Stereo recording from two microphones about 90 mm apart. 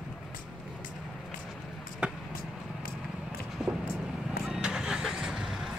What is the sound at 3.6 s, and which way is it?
Vehicle, 5° right (ahead or behind).